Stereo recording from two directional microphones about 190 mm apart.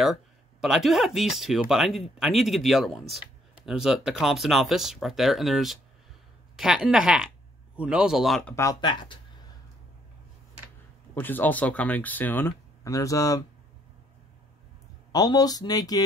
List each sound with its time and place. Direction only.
0.0 s speech: centre (ahead or behind)
8.5 s speech: 20° left (ahead or behind)
11.1 s speech: 10° left (ahead or behind)
15.1 s speech: 20° left (ahead or behind)